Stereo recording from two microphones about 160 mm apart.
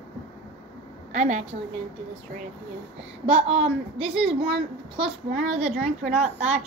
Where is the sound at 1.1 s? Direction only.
45° right (ahead or behind).